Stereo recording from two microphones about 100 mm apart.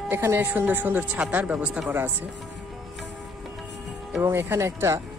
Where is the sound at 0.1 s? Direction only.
25° right (ahead or behind).